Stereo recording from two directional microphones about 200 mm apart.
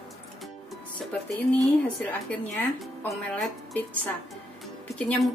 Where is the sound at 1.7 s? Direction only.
5° left (ahead or behind).